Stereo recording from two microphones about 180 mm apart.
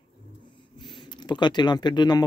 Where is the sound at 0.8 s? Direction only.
25° left (ahead or behind).